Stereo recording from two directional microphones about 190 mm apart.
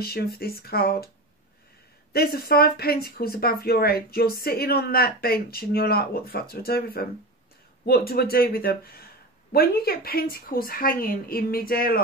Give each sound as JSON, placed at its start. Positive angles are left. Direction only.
{"t": 0.0, "sound": "speech", "side_deg": 55}
{"t": 2.1, "sound": "speech", "side_deg": 55}